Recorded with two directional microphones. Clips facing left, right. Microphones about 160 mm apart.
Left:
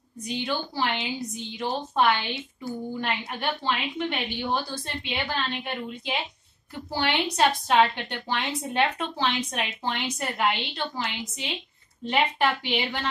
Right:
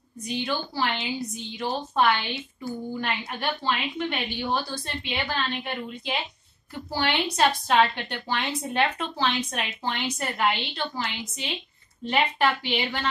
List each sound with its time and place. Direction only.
0.4 s a woman's voice: 20° left (ahead or behind)